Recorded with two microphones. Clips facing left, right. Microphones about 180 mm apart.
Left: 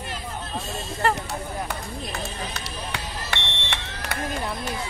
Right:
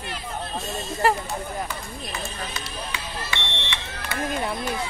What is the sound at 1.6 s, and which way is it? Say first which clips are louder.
Run: left 2 dB; 65° left (ahead or behind).